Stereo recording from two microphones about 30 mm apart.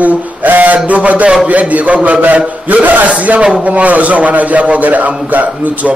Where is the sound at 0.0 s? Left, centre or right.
Right.